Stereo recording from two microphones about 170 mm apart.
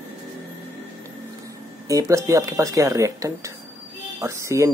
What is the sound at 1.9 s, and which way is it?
Speech, 20° right (ahead or behind).